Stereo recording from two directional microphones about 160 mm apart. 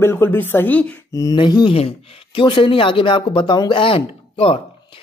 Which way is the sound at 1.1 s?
25° left (ahead or behind).